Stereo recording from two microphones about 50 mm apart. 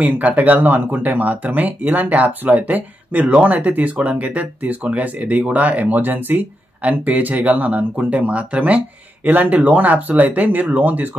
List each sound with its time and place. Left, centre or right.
0.0 s speech: right